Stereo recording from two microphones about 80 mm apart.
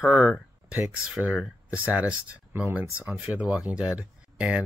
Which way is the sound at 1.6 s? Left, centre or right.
Centre.